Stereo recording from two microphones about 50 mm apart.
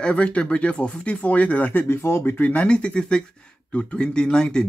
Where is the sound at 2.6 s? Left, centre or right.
Left.